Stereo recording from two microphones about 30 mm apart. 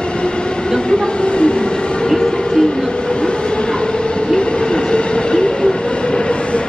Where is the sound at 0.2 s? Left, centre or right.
Left.